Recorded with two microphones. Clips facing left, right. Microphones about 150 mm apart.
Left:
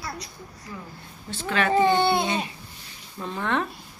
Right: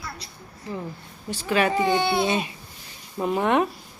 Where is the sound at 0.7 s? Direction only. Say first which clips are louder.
Right 7 dB; 25° right (ahead or behind).